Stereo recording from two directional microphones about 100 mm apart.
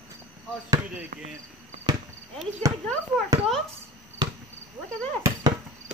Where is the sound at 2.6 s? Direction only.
30° right (ahead or behind).